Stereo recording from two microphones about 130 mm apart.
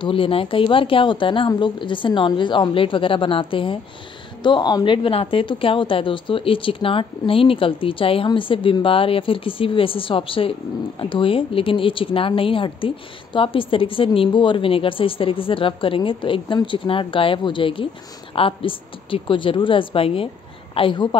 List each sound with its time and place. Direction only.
0.0 s a woman's voice: 40° left (ahead or behind)